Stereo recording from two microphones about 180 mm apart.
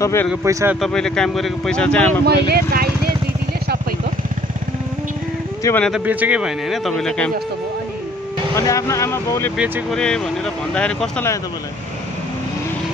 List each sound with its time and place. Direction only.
0.0 s speech: 15° left (ahead or behind)
0.3 s speech: 15° right (ahead or behind)
0.7 s speech: centre (ahead or behind)
2.5 s speech: 55° right (ahead or behind)
5.6 s speech: 15° left (ahead or behind)
5.9 s speech: 5° right (ahead or behind)
8.5 s speech: 15° left (ahead or behind)
9.6 s speech: 5° right (ahead or behind)